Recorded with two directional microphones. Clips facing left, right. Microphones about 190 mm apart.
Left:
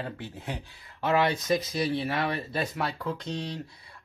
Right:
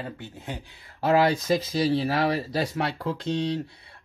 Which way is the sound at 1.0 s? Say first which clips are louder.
Right 4 dB; 35° right (ahead or behind).